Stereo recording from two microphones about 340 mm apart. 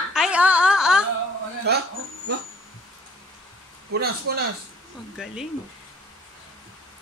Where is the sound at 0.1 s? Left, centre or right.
Centre.